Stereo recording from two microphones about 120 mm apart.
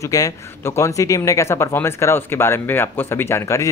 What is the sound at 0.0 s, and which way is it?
Speech, 30° left (ahead or behind).